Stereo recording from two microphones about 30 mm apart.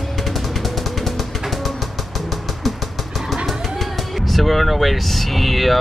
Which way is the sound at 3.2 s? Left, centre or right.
Centre.